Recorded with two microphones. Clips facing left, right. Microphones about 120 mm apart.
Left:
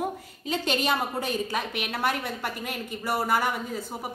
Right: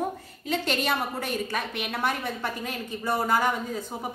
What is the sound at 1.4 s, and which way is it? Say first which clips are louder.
A woman's voice: left 1 dB; 10° left (ahead or behind).